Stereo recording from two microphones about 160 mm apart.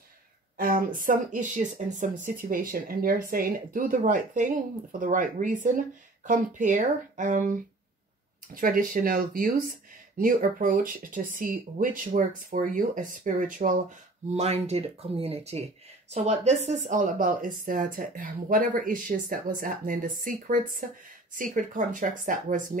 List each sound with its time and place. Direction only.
0.6 s speech: 60° right (ahead or behind)
14.3 s speech: 40° right (ahead or behind)